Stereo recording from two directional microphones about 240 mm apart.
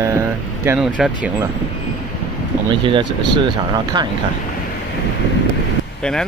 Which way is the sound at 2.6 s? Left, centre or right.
Right.